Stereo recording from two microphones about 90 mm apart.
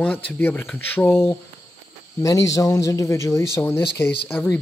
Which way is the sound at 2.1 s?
40° left (ahead or behind).